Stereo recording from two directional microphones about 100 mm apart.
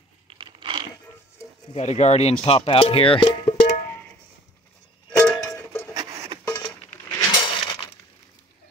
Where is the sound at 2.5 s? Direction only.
70° left (ahead or behind).